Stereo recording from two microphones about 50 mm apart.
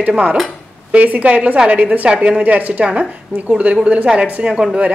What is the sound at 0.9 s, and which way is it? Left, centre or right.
A woman's voice, right.